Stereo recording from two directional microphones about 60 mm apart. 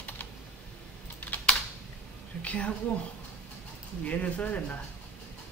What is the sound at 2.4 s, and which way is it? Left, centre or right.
Speech, left.